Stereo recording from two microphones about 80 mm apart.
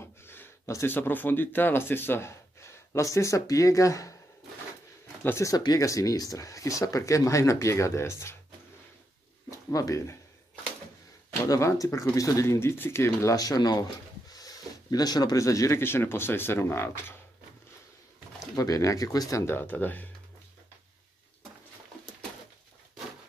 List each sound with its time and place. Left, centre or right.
0.0 s speech: left
5.2 s speech: left
5.5 s speech: left
9.5 s speech: left
11.4 s speech: left
15.8 s speech: left
18.6 s speech: left
19.4 s speech: left